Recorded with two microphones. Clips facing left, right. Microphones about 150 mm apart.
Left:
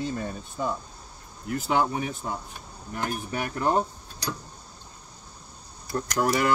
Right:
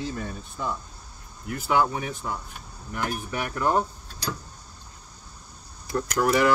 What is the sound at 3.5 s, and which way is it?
Speech, 30° left (ahead or behind).